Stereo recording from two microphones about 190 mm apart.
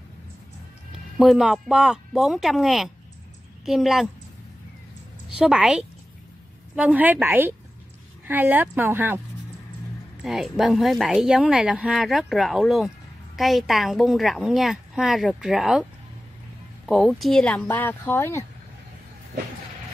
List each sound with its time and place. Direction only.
1.1 s speech: centre (ahead or behind)
5.3 s speech: 5° right (ahead or behind)
10.2 s speech: centre (ahead or behind)